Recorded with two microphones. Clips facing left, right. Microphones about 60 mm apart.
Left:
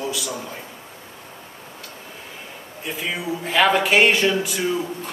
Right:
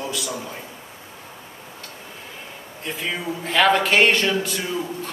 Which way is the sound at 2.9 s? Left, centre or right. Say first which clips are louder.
Left 1 dB; centre.